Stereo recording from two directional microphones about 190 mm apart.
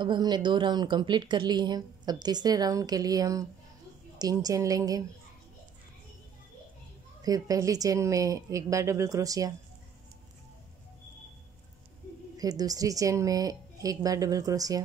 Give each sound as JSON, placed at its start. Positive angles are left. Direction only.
{"t": 0.0, "sound": "speech", "side_deg": -25}
{"t": 7.2, "sound": "a woman's voice", "side_deg": -20}
{"t": 12.4, "sound": "speech", "side_deg": -20}